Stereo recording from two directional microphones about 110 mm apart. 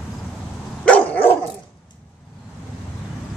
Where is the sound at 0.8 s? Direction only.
15° left (ahead or behind).